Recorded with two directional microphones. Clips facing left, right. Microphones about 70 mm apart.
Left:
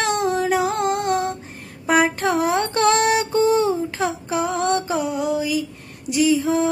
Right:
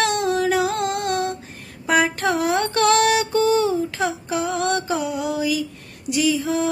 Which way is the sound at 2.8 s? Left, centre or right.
Left.